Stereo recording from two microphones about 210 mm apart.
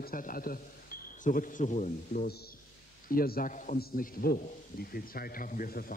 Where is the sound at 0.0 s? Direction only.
40° left (ahead or behind).